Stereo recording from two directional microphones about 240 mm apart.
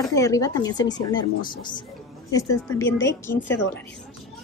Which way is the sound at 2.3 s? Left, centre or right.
Centre.